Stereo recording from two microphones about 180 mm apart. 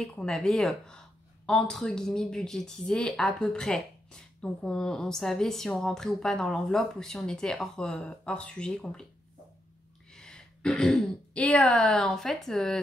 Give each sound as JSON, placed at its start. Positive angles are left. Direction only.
{"t": 0.0, "sound": "speech", "side_deg": 5}
{"t": 10.1, "sound": "speech", "side_deg": 5}